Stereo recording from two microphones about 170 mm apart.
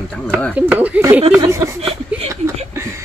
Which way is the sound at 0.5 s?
10° right (ahead or behind).